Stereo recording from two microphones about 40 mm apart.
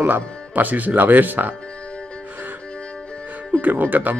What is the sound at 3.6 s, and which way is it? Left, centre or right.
Speech, right.